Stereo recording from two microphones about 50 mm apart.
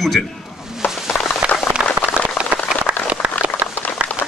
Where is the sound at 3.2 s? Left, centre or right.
Right.